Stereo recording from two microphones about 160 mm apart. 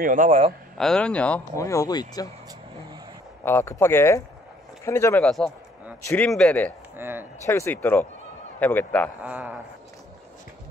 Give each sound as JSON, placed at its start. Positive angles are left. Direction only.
{"t": 0.0, "sound": "a man's voice", "side_deg": -55}
{"t": 0.7, "sound": "speech", "side_deg": 5}
{"t": 1.6, "sound": "speech", "side_deg": 20}
{"t": 3.4, "sound": "speech", "side_deg": 15}
{"t": 5.2, "sound": "speech", "side_deg": 0}
{"t": 7.0, "sound": "speech", "side_deg": -15}
{"t": 7.4, "sound": "speech", "side_deg": 15}
{"t": 9.2, "sound": "a man's voice", "side_deg": -10}